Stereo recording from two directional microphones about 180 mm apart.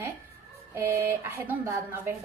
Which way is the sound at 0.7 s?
15° right (ahead or behind).